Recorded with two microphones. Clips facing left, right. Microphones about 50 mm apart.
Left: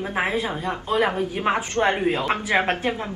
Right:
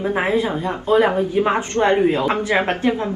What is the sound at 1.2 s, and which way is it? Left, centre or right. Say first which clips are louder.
Speech: right 5 dB; centre.